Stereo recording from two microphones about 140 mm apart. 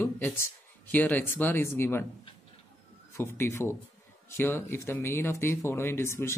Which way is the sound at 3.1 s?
20° left (ahead or behind).